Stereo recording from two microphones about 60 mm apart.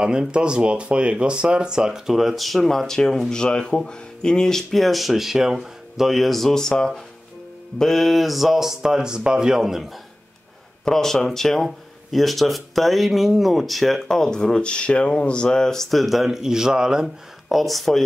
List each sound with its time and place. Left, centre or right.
0.0 s speech: centre
7.8 s speech: centre
10.9 s speech: centre
17.5 s speech: centre